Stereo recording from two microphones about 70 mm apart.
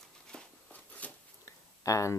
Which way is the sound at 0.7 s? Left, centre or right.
Left.